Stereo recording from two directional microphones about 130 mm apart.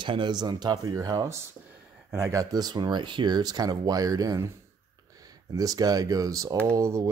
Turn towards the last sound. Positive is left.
turn(degrees=-25)  # may be behind; listen again after turning